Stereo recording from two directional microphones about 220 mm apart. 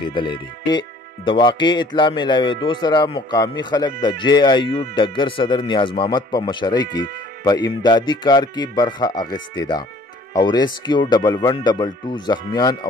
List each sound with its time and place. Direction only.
0.0 s speech: 20° left (ahead or behind)